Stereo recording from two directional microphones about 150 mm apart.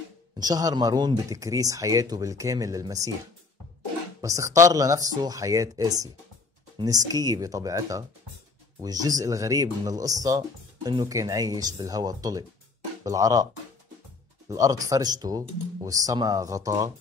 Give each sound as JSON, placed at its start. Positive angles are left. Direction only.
{"t": 0.4, "sound": "speech", "side_deg": -25}
{"t": 4.2, "sound": "speech", "side_deg": -20}
{"t": 14.5, "sound": "speech", "side_deg": -25}